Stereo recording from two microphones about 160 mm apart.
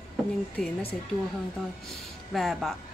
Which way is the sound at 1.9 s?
Centre (ahead or behind).